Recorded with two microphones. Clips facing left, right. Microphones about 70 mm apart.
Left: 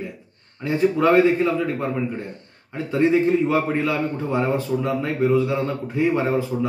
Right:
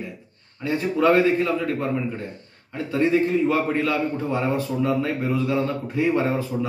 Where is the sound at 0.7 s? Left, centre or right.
Left.